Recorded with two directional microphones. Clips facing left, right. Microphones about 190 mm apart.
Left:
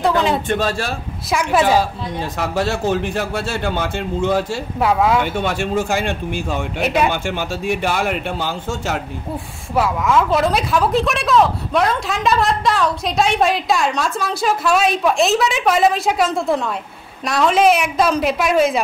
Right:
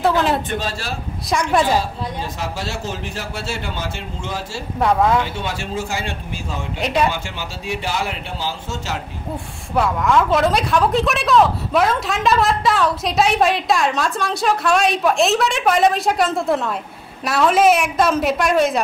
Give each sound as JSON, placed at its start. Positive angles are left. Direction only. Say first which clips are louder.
{"t": 0.0, "sound": "a sound", "louder": "even", "side_deg": 0}
{"t": 0.6, "sound": "a man's voice", "louder": "left 5 dB", "side_deg": 55}
{"t": 1.3, "sound": "a woman's voice", "louder": "left 1 dB", "side_deg": 5}
{"t": 2.3, "sound": "a man's voice", "louder": "left 6 dB", "side_deg": 60}
{"t": 4.7, "sound": "a woman's voice", "louder": "even", "side_deg": 5}
{"t": 5.2, "sound": "a man's voice", "louder": "left 5 dB", "side_deg": 55}
{"t": 6.8, "sound": "speech", "louder": "left 1 dB", "side_deg": 5}
{"t": 7.1, "sound": "a man's voice", "louder": "left 5 dB", "side_deg": 50}
{"t": 9.8, "sound": "a woman's voice", "louder": "even", "side_deg": 0}